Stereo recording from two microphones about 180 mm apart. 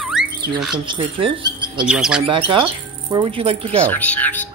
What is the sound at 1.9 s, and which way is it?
Speech, 5° right (ahead or behind).